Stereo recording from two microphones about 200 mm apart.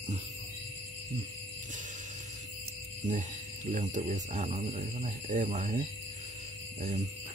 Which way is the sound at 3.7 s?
35° right (ahead or behind).